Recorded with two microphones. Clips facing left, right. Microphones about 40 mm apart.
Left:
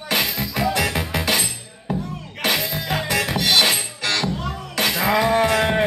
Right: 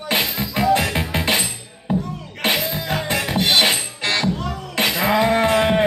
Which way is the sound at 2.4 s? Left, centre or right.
Centre.